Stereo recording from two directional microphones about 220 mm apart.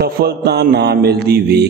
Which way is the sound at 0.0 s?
45° right (ahead or behind).